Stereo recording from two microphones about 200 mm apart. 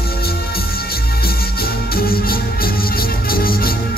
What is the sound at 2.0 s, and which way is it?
Music, 50° left (ahead or behind).